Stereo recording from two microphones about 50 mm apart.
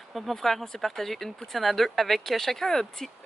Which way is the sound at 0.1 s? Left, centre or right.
Centre.